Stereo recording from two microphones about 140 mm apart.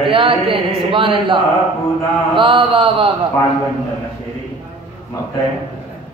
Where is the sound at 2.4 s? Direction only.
35° right (ahead or behind).